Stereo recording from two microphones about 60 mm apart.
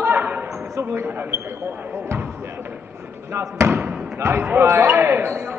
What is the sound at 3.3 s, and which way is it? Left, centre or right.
Speech, right.